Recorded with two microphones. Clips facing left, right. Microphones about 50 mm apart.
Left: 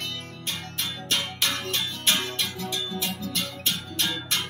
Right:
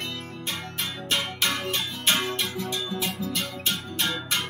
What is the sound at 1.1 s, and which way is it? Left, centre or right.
Music, centre.